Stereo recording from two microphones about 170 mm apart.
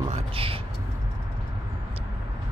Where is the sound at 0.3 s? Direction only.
35° right (ahead or behind).